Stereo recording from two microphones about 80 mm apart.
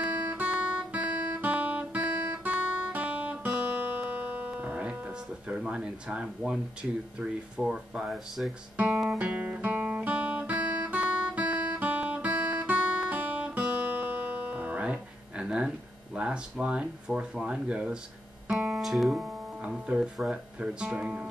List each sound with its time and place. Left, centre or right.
0.3 s guitar: right
8.8 s speech: centre
9.2 s guitar: centre
16.2 s speech: centre